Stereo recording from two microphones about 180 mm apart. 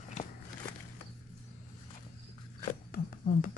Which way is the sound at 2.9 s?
50° left (ahead or behind).